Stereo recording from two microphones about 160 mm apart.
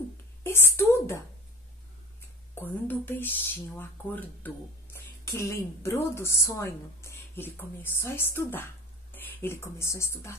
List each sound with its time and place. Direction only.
0.4 s a woman's voice: 15° left (ahead or behind)
2.6 s a woman's voice: 15° left (ahead or behind)